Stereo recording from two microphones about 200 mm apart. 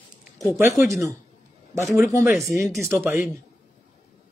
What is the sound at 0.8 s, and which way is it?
Speech, 15° right (ahead or behind).